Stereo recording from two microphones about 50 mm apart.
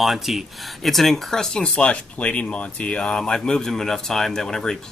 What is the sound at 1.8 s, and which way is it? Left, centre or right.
Speech, left.